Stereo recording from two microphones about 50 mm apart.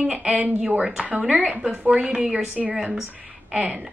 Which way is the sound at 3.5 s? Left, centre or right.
Centre.